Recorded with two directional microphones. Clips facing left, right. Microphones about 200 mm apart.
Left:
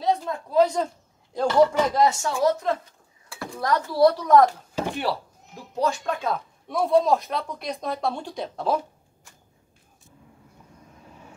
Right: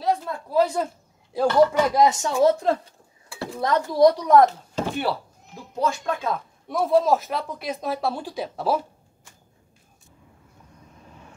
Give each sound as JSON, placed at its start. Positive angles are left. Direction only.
{"t": 0.5, "sound": "speech", "side_deg": -5}
{"t": 2.4, "sound": "speech", "side_deg": -30}
{"t": 4.5, "sound": "speech", "side_deg": 10}
{"t": 5.8, "sound": "speech", "side_deg": 0}